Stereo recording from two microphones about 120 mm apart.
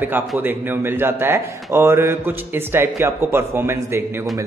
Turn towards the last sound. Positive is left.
turn(degrees=-20)  # may be behind; listen again after turning